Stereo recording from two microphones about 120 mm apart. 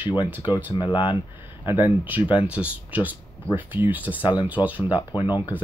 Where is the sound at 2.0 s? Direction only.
15° right (ahead or behind).